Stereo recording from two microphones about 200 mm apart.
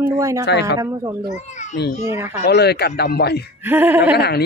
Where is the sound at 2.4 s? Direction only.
55° left (ahead or behind).